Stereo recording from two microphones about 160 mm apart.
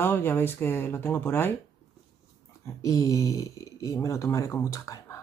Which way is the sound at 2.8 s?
20° left (ahead or behind).